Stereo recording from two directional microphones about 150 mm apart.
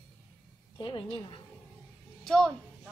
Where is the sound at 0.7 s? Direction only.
35° left (ahead or behind).